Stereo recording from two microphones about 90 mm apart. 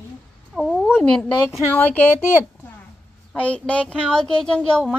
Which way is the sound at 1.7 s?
20° left (ahead or behind).